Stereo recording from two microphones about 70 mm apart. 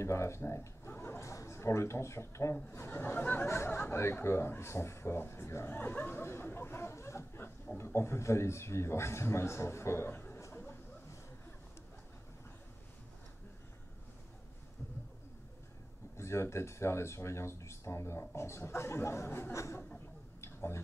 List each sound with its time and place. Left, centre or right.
0.0 s a man's voice: left
3.4 s a man's voice: left
5.7 s a man's voice: left
16.2 s a man's voice: left
20.3 s tick-tock: left